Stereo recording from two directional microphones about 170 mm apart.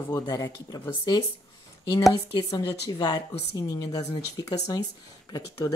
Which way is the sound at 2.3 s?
25° left (ahead or behind).